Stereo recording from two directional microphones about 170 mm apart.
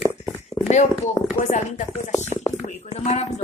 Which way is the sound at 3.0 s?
40° left (ahead or behind).